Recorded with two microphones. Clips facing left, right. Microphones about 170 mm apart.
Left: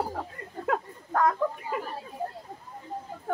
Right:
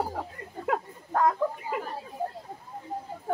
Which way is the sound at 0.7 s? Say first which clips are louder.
Even; 20° right (ahead or behind).